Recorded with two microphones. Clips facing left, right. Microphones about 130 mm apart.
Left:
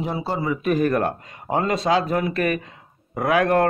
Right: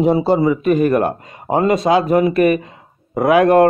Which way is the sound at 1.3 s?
20° right (ahead or behind).